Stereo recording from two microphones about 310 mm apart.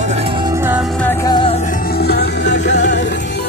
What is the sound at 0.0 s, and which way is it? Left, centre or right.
Music, centre.